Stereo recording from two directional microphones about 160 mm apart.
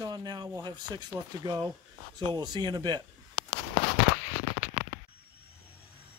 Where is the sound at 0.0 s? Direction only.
25° right (ahead or behind).